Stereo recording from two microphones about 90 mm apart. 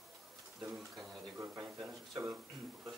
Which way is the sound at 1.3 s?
35° right (ahead or behind).